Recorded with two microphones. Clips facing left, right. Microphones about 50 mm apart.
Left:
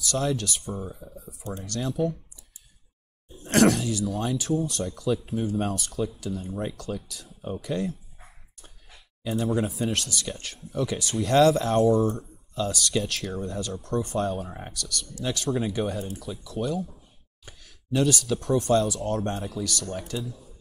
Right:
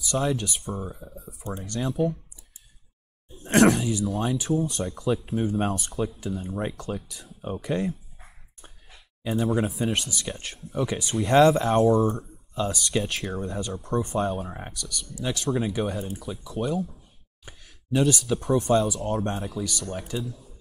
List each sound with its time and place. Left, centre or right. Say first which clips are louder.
0.0 s speech: right 1 dB; centre
3.4 s speech: right 1 dB; centre
9.4 s speech: right 1 dB; centre
11.6 s speech: right 1 dB; centre